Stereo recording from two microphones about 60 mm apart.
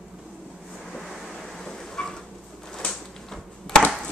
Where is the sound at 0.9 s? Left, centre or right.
Centre.